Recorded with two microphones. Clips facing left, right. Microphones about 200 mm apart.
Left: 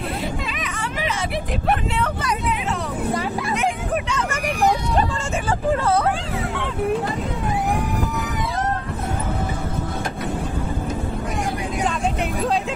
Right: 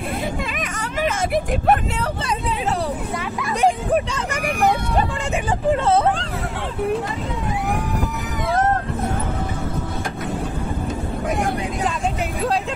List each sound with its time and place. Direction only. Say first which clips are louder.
1.0 s speech: right 6 dB; 45° right (ahead or behind)
3.6 s speech: right 9 dB; 30° right (ahead or behind)
8.5 s music: right 8 dB; 50° right (ahead or behind)